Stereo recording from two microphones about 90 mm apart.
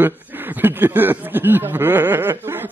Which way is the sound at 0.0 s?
20° right (ahead or behind).